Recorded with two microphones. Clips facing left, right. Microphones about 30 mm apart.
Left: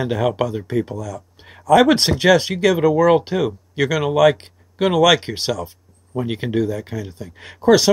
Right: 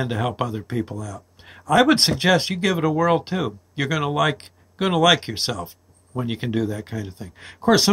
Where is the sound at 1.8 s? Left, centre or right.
Centre.